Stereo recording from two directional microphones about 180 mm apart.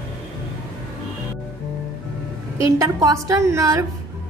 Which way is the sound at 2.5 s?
15° right (ahead or behind).